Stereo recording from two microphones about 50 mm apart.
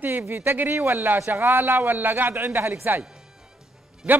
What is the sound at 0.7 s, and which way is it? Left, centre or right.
A man's voice, right.